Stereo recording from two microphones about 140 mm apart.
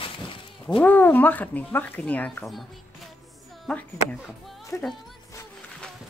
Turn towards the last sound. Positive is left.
turn(degrees=0)  # may be behind; listen again after turning